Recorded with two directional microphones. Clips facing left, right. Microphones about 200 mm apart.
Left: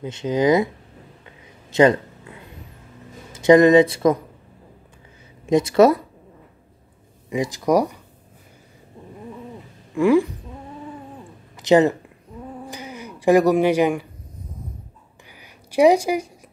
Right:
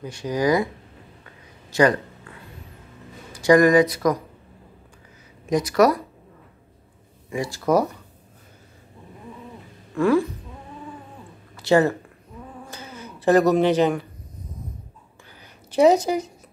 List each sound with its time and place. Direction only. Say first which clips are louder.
0.0 s speech: left 3 dB; 20° left (ahead or behind)
1.2 s a sound: left 1 dB; 25° left (ahead or behind)
3.3 s speech: left 3 dB; 20° left (ahead or behind)
5.5 s speech: left 4 dB; 25° left (ahead or behind)
7.2 s speech: left 2 dB; 20° left (ahead or behind)
9.9 s speech: left 3 dB; 15° left (ahead or behind)
11.5 s speech: left 3 dB; 20° left (ahead or behind)
12.6 s a sound: left 4 dB; 15° left (ahead or behind)
15.4 s a sound: left 1 dB; 10° left (ahead or behind)